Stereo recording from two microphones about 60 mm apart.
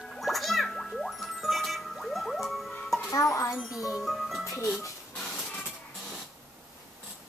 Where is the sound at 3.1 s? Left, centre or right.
Left.